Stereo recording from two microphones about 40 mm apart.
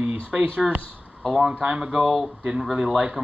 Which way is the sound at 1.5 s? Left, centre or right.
Right.